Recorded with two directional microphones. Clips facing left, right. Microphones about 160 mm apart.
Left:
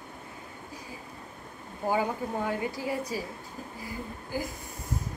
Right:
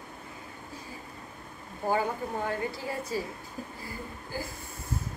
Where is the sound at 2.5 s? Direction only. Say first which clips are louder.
Left 2 dB; 15° left (ahead or behind).